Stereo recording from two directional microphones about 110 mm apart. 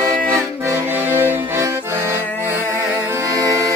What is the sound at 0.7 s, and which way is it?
Accordion, 20° right (ahead or behind).